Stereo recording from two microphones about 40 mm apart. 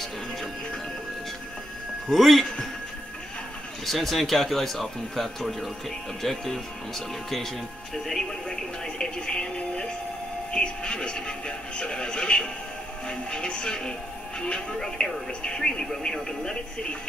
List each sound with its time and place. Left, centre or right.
2.0 s speech: centre
3.8 s speech: centre
7.9 s speech: centre
8.5 s speech: centre
14.8 s speech: centre